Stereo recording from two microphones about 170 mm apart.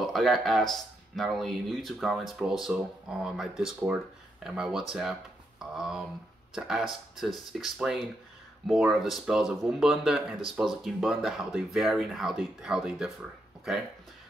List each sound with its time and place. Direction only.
0.0 s speech: centre (ahead or behind)
7.2 s speech: centre (ahead or behind)